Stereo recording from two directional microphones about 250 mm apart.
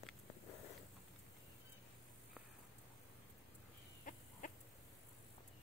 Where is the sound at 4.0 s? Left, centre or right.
Left.